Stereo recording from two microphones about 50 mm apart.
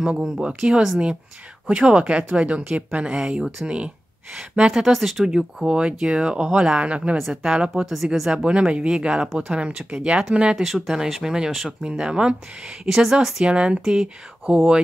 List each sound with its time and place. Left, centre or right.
0.0 s speech: centre
5.2 s speech: centre
7.2 s speech: centre
7.5 s speech: centre
7.8 s speech: centre
13.5 s speech: right